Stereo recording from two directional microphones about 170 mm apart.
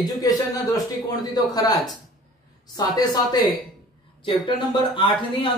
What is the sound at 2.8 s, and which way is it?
Speech, 25° left (ahead or behind).